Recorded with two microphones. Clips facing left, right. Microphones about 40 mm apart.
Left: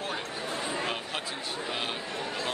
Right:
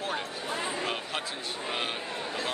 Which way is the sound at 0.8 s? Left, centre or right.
Centre.